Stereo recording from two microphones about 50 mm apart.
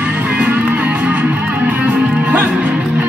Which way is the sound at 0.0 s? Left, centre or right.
Right.